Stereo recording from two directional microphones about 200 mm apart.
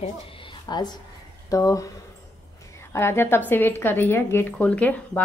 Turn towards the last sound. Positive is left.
turn(degrees=5)  # may be behind; listen again after turning